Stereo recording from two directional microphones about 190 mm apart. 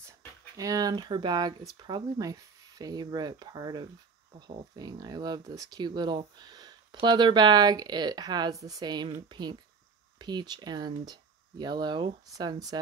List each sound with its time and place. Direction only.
0.6 s speech: 20° right (ahead or behind)